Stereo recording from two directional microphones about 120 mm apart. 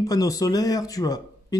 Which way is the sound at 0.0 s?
30° left (ahead or behind).